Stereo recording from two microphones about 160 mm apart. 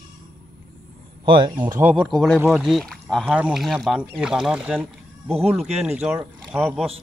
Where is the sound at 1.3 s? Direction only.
30° right (ahead or behind).